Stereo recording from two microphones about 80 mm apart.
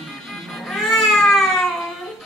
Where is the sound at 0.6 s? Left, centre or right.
Centre.